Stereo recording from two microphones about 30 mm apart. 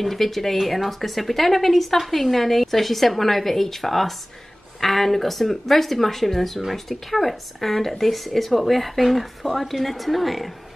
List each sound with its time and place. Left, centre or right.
0.0 s speech: centre